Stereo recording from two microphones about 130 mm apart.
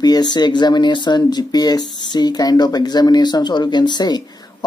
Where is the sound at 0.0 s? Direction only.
30° left (ahead or behind).